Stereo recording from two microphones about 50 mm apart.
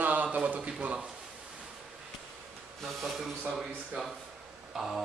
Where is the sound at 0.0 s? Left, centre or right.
Right.